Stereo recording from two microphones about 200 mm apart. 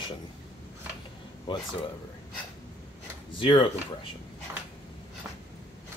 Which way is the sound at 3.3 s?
25° left (ahead or behind).